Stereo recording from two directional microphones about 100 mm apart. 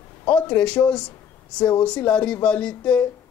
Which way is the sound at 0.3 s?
10° left (ahead or behind).